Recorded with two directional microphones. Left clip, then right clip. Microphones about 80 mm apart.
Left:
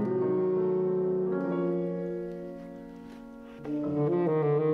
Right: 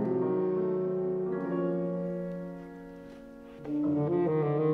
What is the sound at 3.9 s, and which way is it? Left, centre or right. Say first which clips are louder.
Music: left 3 dB; left.